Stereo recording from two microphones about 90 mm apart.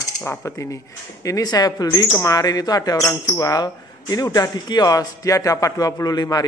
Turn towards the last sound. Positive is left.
turn(degrees=45)  # may be behind; listen again after turning